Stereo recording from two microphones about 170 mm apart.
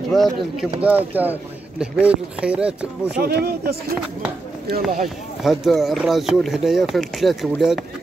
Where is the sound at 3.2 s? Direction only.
70° right (ahead or behind).